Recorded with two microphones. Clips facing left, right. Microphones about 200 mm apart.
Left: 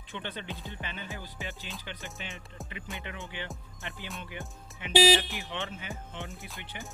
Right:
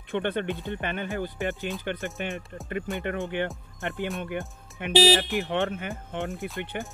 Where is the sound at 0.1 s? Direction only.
55° right (ahead or behind).